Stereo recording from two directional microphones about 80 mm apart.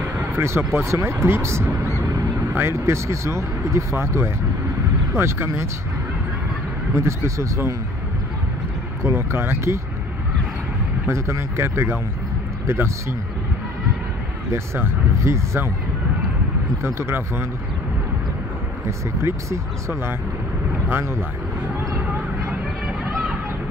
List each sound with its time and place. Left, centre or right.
0.2 s speech: right
7.0 s speech: right
9.0 s speech: right
11.1 s speech: right
14.5 s speech: right
16.8 s speech: right
18.9 s speech: right